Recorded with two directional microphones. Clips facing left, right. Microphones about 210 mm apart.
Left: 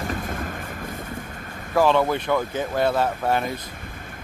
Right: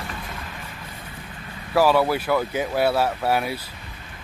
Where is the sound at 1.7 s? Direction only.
5° right (ahead or behind).